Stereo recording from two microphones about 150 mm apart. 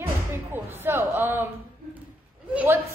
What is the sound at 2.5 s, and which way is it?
Speech, 15° right (ahead or behind).